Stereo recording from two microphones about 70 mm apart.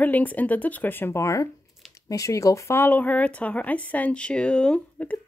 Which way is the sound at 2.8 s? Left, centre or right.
Left.